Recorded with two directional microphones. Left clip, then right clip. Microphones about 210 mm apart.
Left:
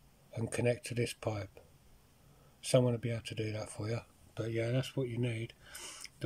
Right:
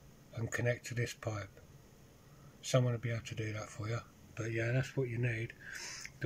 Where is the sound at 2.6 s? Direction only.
5° left (ahead or behind).